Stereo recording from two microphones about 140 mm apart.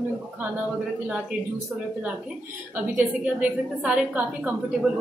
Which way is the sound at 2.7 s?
15° right (ahead or behind).